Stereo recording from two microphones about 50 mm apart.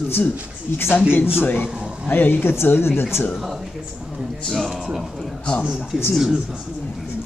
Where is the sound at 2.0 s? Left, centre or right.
Left.